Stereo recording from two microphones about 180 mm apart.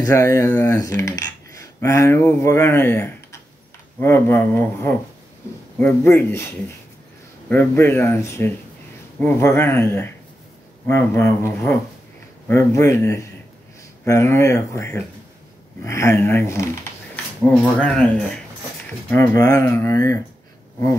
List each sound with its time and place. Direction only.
0.0 s speech: 20° left (ahead or behind)